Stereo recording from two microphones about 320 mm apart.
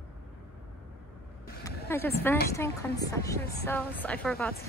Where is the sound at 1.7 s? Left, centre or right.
Centre.